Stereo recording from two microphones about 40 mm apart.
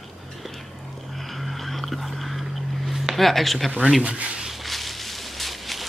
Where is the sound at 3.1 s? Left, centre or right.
Centre.